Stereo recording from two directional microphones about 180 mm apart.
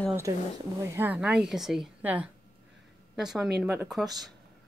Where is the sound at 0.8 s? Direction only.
10° right (ahead or behind).